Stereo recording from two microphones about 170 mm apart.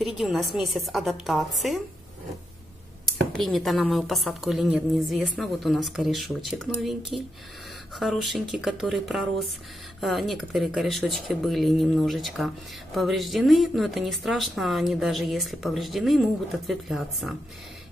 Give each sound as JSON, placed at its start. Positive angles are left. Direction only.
{"t": 0.0, "sound": "speech", "side_deg": 0}
{"t": 3.1, "sound": "speech", "side_deg": 0}